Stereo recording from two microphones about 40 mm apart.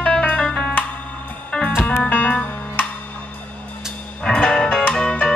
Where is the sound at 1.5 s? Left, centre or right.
Left.